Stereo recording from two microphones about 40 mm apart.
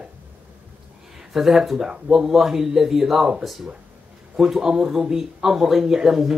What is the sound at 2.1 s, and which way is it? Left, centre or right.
Speech, centre.